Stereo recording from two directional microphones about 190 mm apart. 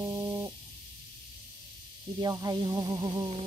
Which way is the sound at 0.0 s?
20° right (ahead or behind).